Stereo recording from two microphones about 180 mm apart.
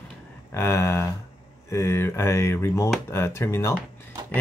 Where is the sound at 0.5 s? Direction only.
15° left (ahead or behind).